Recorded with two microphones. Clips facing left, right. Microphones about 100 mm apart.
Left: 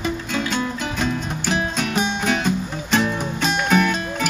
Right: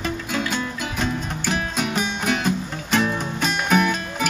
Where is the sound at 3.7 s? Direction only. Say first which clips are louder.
Even; 5° right (ahead or behind).